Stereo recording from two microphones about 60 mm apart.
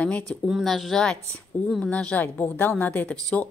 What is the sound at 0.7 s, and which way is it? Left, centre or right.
Speech, centre.